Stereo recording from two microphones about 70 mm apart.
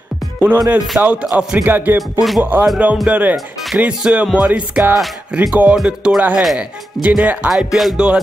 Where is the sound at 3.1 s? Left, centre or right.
Right.